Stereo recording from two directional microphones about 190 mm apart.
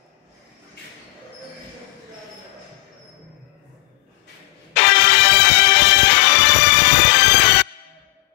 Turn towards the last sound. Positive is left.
turn(degrees=60)  # may be behind; listen again after turning